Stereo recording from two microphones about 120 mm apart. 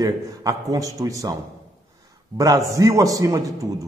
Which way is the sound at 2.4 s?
25° right (ahead or behind).